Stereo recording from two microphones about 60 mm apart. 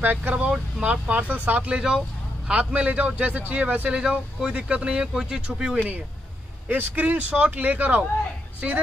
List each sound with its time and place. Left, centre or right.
0.0 s speech: right
0.3 s a man's voice: centre
4.0 s speech: centre
6.7 s a man's voice: right